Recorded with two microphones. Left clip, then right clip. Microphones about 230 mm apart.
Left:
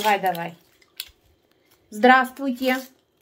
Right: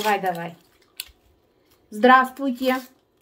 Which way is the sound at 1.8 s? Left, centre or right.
Centre.